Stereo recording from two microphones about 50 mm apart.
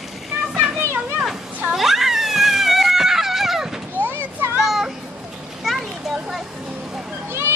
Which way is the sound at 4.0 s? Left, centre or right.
Right.